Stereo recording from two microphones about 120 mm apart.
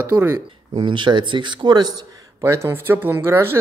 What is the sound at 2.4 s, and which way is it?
Speech, 20° right (ahead or behind).